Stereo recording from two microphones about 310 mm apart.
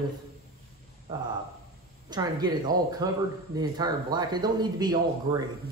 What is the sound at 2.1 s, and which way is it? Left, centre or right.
Speech, centre.